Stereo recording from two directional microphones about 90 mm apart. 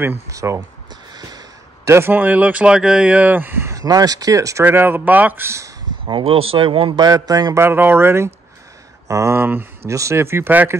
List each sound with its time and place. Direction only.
0.3 s speech: 35° right (ahead or behind)
1.9 s speech: 25° right (ahead or behind)
3.7 s speech: 45° right (ahead or behind)
4.6 s speech: 20° right (ahead or behind)
6.0 s speech: 80° right
7.0 s speech: 40° right (ahead or behind)
7.5 s speech: 25° right (ahead or behind)